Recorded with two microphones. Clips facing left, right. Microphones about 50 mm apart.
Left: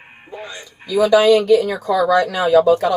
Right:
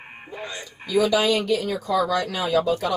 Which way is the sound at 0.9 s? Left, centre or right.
Left.